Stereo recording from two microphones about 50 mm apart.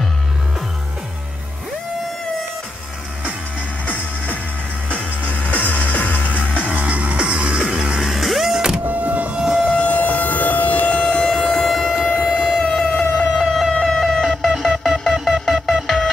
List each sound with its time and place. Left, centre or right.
3.8 s music: left
6.7 s music: right
8.0 s power windows: centre
8.8 s civil defense siren: right
9.4 s civil defense siren: centre
9.7 s civil defense siren: left
11.2 s civil defense siren: centre
12.2 s civil defense siren: centre
12.6 s a sound: centre
13.3 s siren: centre
13.8 s a sound: centre
15.0 s music: centre